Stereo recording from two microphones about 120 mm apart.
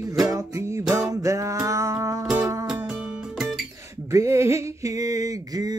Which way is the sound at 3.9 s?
25° right (ahead or behind).